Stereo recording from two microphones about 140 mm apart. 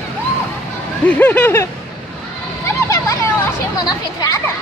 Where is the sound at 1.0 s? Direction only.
10° left (ahead or behind).